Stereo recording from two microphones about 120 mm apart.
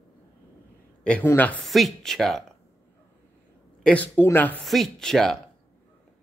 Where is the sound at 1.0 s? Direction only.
10° left (ahead or behind).